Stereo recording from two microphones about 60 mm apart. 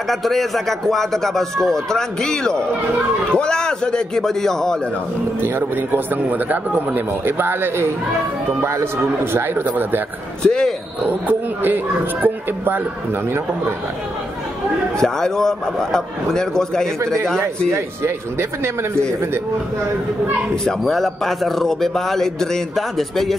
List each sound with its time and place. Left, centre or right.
0.1 s a man's voice: centre
5.4 s a man's voice: right
8.5 s a man's voice: right
10.4 s a man's voice: centre
11.1 s a man's voice: right
15.0 s a man's voice: centre
17.0 s speech: right
20.6 s a man's voice: centre